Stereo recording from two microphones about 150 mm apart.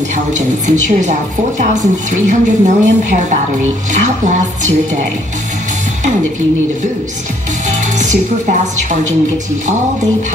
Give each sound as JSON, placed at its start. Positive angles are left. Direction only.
{"t": 0.3, "sound": "a woman's voice", "side_deg": -55}
{"t": 8.0, "sound": "speech", "side_deg": -55}